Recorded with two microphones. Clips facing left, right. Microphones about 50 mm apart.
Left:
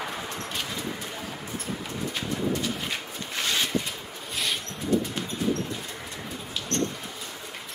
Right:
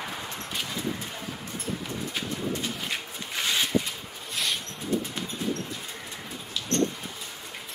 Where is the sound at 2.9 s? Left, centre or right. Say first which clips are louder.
Even; centre.